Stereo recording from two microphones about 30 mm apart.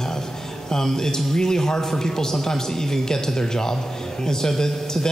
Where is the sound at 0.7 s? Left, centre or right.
Centre.